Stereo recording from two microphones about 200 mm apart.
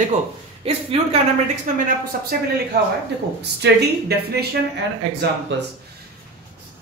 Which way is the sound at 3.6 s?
55° right (ahead or behind).